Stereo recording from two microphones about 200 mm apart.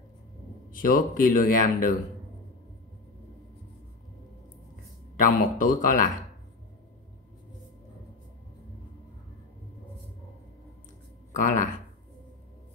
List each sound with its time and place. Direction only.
0.7 s speech: 45° left (ahead or behind)
5.2 s speech: 45° left (ahead or behind)
11.3 s speech: 40° left (ahead or behind)